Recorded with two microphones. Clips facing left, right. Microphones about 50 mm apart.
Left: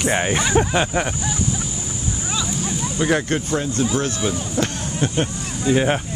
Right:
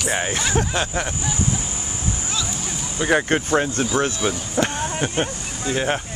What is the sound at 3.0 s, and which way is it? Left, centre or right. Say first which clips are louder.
Speech: even; centre.